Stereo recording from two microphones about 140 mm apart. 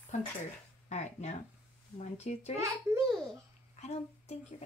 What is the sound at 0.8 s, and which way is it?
Speech, 55° left (ahead or behind).